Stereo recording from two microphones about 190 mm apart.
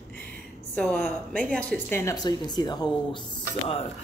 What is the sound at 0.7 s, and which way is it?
A woman's voice, centre (ahead or behind).